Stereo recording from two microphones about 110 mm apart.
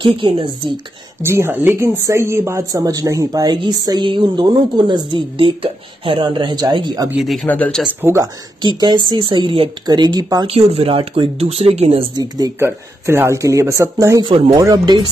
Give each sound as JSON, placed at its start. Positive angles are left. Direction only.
{"t": 0.0, "sound": "a woman's voice", "side_deg": -50}
{"t": 1.2, "sound": "a man's voice", "side_deg": -20}
{"t": 7.2, "sound": "speech", "side_deg": 0}
{"t": 7.4, "sound": "speech", "side_deg": 15}
{"t": 7.8, "sound": "a man's voice", "side_deg": -20}
{"t": 8.6, "sound": "a woman's voice", "side_deg": -40}
{"t": 10.4, "sound": "speech", "side_deg": -60}
{"t": 12.2, "sound": "speech", "side_deg": -35}
{"t": 12.5, "sound": "a man's voice", "side_deg": -20}